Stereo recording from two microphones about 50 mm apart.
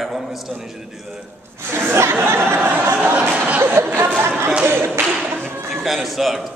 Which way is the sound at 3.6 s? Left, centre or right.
Right.